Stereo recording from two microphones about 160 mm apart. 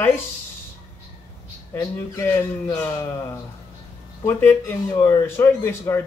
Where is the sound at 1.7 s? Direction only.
15° left (ahead or behind).